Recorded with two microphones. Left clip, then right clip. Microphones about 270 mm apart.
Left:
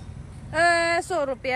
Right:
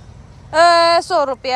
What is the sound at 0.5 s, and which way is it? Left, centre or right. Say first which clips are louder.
Speech: right 10 dB; right.